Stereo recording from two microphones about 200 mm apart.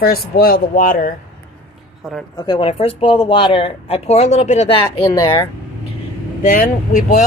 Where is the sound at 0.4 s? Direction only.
45° left (ahead or behind).